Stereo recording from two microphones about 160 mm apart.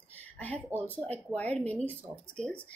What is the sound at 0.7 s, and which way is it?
Speech, 10° right (ahead or behind).